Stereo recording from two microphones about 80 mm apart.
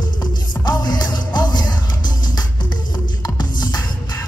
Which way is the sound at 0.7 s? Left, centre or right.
Left.